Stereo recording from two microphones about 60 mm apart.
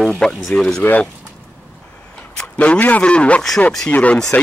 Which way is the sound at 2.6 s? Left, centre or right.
Left.